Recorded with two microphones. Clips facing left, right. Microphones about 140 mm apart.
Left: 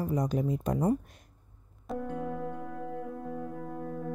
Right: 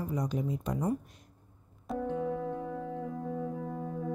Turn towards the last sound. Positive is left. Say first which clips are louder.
# right 1 dB
turn(degrees=-5)  # may be behind; listen again after turning